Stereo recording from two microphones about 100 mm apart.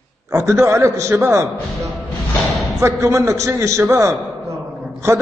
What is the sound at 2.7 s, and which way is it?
A man's voice, 30° right (ahead or behind).